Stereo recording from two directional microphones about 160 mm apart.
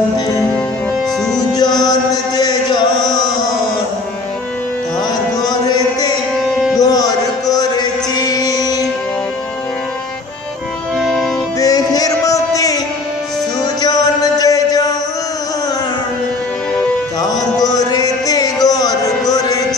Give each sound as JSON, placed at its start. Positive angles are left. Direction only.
{"t": 1.5, "sound": "music", "side_deg": 25}
{"t": 2.3, "sound": "chant", "side_deg": 25}
{"t": 5.4, "sound": "music", "side_deg": 25}
{"t": 6.8, "sound": "chant", "side_deg": 25}
{"t": 11.0, "sound": "music", "side_deg": 0}
{"t": 11.6, "sound": "music", "side_deg": 25}
{"t": 17.3, "sound": "music", "side_deg": 25}